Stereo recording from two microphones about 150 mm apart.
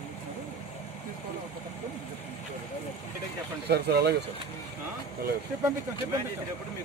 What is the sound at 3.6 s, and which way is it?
Speech, 90° right.